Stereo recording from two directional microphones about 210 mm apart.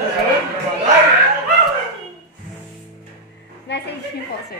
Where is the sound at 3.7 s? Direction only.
55° left (ahead or behind).